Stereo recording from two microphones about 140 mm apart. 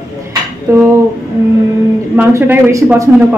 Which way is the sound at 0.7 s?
20° right (ahead or behind).